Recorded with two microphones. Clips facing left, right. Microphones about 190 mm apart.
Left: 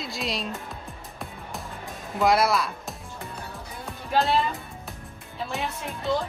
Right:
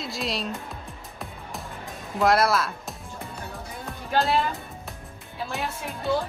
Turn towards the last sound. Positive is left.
turn(degrees=0)  # may be behind; listen again after turning